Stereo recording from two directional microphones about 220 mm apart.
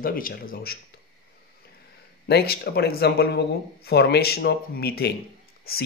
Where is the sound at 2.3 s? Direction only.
45° left (ahead or behind).